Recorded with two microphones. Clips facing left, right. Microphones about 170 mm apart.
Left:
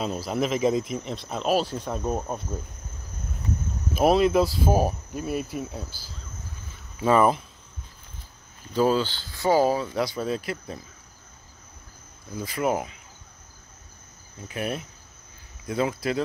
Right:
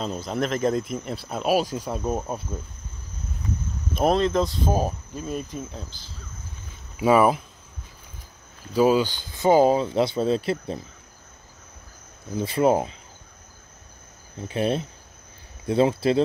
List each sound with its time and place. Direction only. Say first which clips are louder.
0.0 s speech: even; 5° left (ahead or behind)
3.9 s speech: left 1 dB; 5° left (ahead or behind)
7.0 s speech: right 2 dB; 10° right (ahead or behind)
8.7 s speech: right 3 dB; 10° right (ahead or behind); by 10.8 s 25° right (ahead or behind)
12.4 s speech: right 6 dB; 30° right (ahead or behind)
14.5 s speech: right 6 dB; 30° right (ahead or behind)